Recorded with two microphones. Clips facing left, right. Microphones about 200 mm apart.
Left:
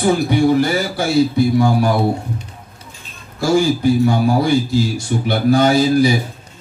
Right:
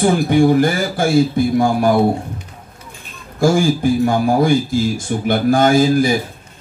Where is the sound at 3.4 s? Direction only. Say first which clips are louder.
Even; 50° right (ahead or behind).